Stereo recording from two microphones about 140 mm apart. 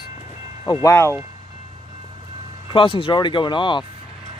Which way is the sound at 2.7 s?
40° left (ahead or behind).